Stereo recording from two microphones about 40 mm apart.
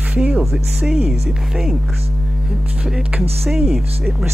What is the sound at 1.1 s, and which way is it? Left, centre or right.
Speech, centre.